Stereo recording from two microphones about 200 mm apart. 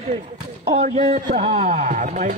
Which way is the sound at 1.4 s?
30° right (ahead or behind).